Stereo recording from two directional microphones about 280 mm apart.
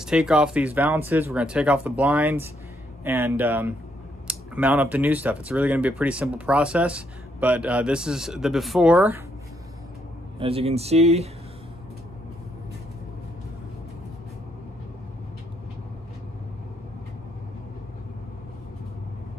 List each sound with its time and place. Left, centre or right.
0.0 s speech: centre
10.4 s speech: right